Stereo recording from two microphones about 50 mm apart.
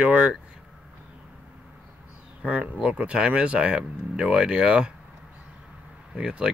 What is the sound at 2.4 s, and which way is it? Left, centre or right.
Speech, right.